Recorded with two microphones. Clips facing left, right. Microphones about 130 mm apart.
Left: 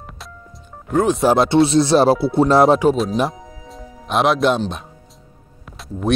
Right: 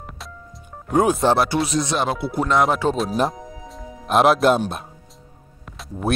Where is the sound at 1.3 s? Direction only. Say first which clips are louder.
Left 6 dB; 25° left (ahead or behind).